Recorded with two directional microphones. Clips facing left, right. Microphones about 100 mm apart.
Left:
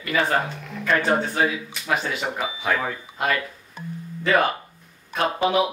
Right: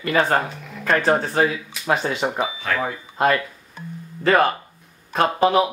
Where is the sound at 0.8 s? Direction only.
35° right (ahead or behind).